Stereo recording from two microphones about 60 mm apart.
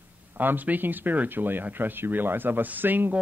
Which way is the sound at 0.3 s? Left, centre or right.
Right.